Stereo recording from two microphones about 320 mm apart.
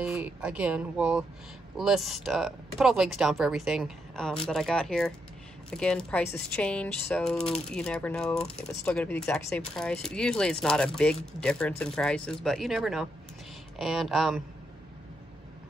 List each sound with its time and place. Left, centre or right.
0.0 s speech: centre